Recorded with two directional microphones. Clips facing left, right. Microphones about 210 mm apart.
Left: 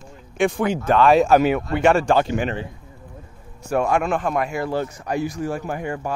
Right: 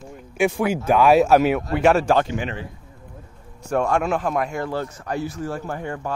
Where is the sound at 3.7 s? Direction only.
5° left (ahead or behind).